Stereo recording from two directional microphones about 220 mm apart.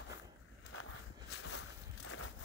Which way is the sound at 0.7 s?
70° left (ahead or behind).